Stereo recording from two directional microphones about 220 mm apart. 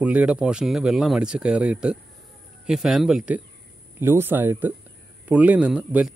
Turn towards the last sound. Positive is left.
turn(degrees=-5)  # may be behind; listen again after turning